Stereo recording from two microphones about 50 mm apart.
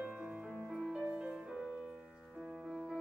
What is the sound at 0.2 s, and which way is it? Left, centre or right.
Music, centre.